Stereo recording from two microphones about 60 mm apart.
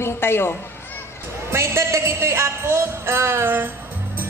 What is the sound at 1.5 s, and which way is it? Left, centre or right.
Speech, right.